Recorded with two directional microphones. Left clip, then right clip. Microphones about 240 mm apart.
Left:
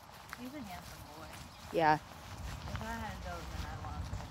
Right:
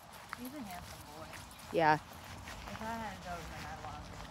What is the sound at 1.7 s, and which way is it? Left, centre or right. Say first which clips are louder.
Speech: even; centre.